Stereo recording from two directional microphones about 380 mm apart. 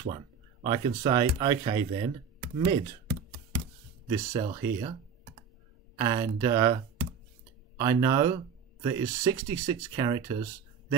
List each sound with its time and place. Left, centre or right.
0.7 s speech: centre
5.9 s speech: centre